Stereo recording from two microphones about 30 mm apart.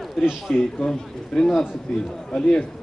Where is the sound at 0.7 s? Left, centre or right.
Left.